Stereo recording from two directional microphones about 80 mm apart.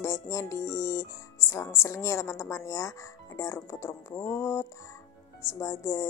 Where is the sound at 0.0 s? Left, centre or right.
Left.